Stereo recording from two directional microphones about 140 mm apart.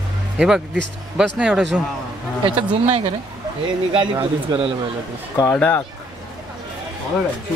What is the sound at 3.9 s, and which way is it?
Speech, 30° right (ahead or behind).